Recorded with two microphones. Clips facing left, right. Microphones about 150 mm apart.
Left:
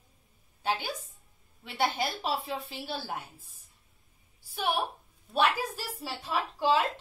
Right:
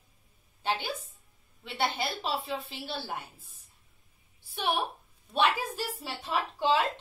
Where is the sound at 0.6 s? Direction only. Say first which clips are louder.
Even; 5° left (ahead or behind).